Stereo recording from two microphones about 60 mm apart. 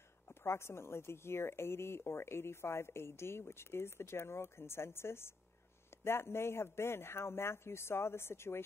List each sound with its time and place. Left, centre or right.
0.3 s speech: left